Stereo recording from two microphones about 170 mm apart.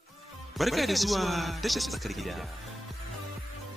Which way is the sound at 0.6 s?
Centre (ahead or behind).